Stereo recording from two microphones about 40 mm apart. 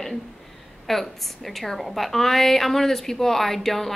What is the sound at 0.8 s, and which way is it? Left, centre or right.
A woman's voice, centre.